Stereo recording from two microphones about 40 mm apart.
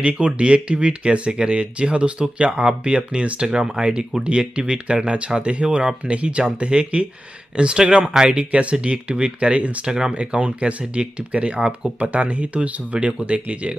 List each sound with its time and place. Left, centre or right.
0.0 s speech: right
8.4 s speech: right
9.8 s speech: centre
10.1 s speech: right